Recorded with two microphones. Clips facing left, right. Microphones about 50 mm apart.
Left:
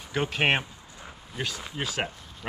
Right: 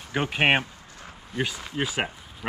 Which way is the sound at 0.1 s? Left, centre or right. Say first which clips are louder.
Right 3 dB; centre.